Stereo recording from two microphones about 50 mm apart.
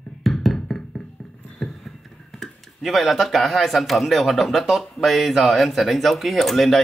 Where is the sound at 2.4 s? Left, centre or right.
Centre.